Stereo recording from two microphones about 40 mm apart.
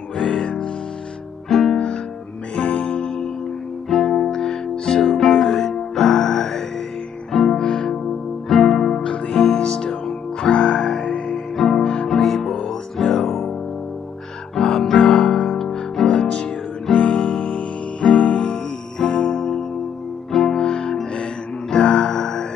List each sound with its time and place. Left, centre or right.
0.2 s music: left
1.5 s guitar: centre
2.5 s music: left
3.9 s music: centre
5.0 s music: centre
14.5 s music: centre
16.1 s music: left
18.9 s music: centre